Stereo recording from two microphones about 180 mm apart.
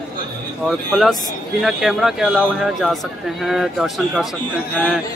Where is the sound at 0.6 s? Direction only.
Centre (ahead or behind).